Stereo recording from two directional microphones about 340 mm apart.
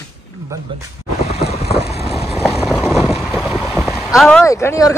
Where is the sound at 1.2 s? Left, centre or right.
Centre.